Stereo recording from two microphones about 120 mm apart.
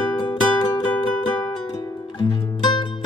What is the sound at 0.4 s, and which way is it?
Music, 35° left (ahead or behind).